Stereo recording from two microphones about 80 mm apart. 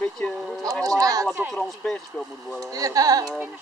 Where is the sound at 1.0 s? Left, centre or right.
Right.